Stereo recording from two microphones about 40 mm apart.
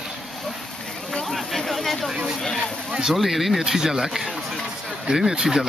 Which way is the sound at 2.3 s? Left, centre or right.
Centre.